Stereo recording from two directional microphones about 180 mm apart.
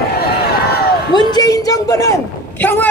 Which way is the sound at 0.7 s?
60° left (ahead or behind).